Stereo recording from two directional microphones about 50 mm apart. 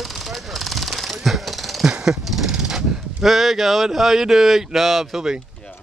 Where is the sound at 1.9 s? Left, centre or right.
Centre.